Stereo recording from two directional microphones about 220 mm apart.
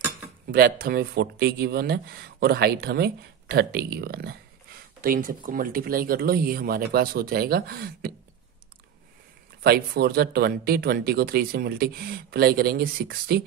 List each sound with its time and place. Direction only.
0.5 s speech: 40° right (ahead or behind)
9.6 s speech: 45° right (ahead or behind)